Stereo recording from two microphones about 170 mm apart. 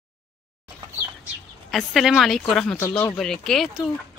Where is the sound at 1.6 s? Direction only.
Centre (ahead or behind).